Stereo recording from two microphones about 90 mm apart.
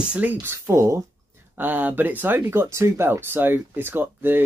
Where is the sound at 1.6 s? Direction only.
20° right (ahead or behind).